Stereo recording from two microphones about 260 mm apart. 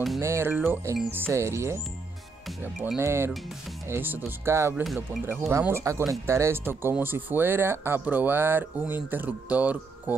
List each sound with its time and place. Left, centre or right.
0.2 s speech: centre